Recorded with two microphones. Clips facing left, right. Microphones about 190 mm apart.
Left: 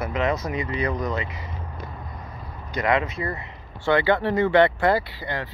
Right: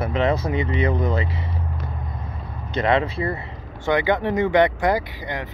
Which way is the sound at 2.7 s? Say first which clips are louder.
Right 3 dB; 30° right (ahead or behind).